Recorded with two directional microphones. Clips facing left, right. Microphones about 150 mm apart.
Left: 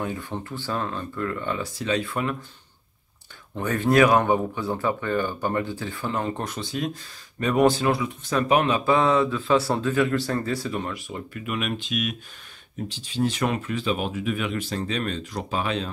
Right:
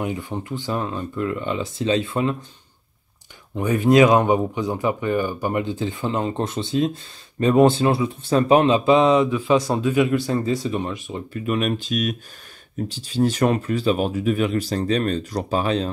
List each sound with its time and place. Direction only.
0.0 s speech: 15° right (ahead or behind)
3.5 s speech: 10° right (ahead or behind)
11.3 s speech: 35° right (ahead or behind)